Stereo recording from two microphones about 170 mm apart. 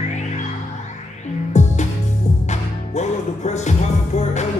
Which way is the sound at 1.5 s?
45° left (ahead or behind).